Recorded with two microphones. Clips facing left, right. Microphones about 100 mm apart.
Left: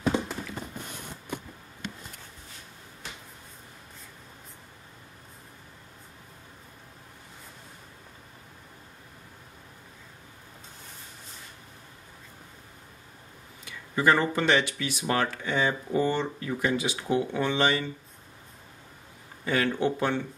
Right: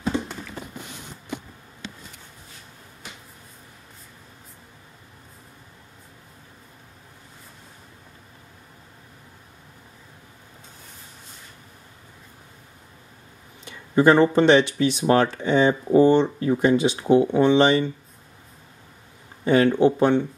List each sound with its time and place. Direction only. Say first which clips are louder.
13.7 s speech: right 7 dB; 25° right (ahead or behind)
19.4 s speech: right 9 dB; 25° right (ahead or behind)